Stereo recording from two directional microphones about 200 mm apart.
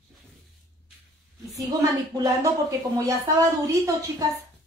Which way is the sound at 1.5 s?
15° right (ahead or behind).